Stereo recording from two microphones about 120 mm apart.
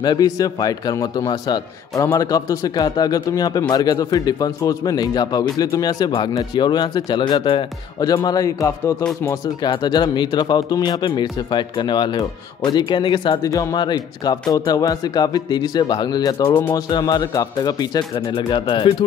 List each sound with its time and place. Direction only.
0.0 s speech: 35° left (ahead or behind)